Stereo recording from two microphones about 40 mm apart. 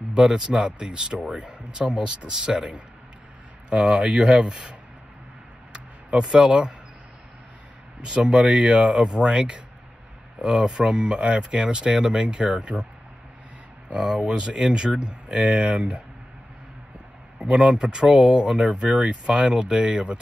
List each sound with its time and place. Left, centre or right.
0.1 s speech: right
6.2 s speech: centre
8.1 s speech: right
14.1 s speech: right
17.5 s speech: right